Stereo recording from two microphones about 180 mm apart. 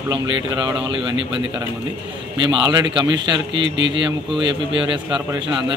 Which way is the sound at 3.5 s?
90° right.